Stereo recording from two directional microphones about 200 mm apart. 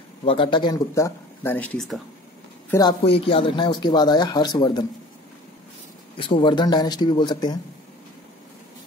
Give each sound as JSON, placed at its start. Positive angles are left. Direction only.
{"t": 0.2, "sound": "speech", "side_deg": 25}
{"t": 2.7, "sound": "speech", "side_deg": 20}
{"t": 6.1, "sound": "speech", "side_deg": 25}